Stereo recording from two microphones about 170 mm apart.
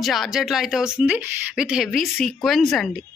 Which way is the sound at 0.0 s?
Centre (ahead or behind).